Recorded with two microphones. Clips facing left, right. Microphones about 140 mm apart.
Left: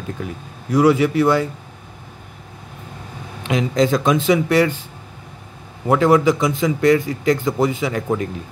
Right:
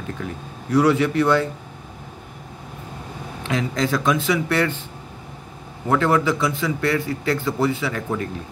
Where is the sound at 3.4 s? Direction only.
20° left (ahead or behind).